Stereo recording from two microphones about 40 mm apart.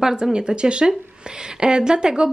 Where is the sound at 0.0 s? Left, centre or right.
Centre.